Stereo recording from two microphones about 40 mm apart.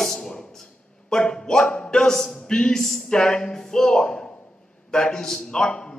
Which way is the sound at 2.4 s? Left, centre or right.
Centre.